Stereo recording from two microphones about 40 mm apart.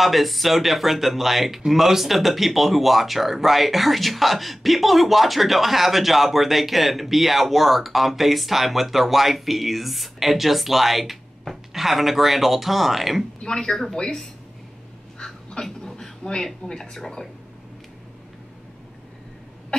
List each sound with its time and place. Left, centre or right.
0.0 s speech: centre
13.4 s speech: centre
15.1 s a sound: centre
16.6 s speech: centre